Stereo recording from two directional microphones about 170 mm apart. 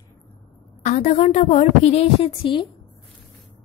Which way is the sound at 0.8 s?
45° left (ahead or behind).